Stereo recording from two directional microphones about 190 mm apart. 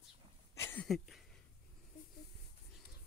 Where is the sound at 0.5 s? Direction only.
15° left (ahead or behind).